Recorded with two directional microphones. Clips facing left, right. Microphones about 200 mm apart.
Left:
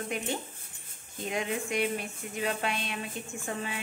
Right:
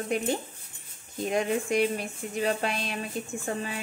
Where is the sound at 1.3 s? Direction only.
40° right (ahead or behind).